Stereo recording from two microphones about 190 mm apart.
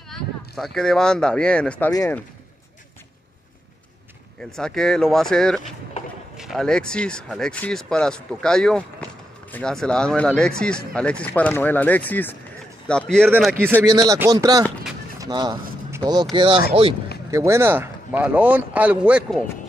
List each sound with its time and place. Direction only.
0.1 s speech: 5° left (ahead or behind)
1.9 s speech: 20° left (ahead or behind)
4.4 s speech: 5° left (ahead or behind)
13.7 s speech: 20° right (ahead or behind)
17.3 s speech: 15° right (ahead or behind)